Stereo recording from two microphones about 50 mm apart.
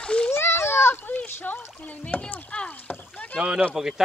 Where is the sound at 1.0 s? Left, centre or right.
Left.